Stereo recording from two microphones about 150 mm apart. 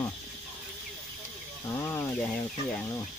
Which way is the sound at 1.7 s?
15° left (ahead or behind).